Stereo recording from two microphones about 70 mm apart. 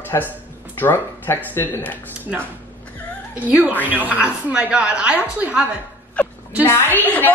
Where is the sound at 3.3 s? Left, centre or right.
Right.